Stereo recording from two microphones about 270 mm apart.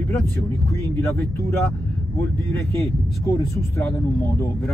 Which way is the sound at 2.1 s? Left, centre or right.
Centre.